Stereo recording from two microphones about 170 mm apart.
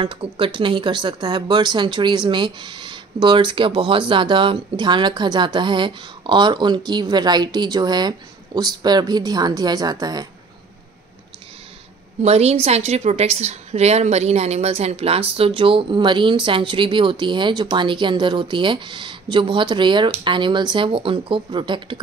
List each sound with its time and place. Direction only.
0.0 s a woman's voice: 30° right (ahead or behind)
12.2 s a woman's voice: 40° right (ahead or behind)